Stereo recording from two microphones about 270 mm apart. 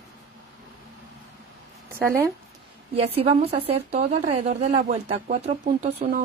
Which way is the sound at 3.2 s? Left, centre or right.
Right.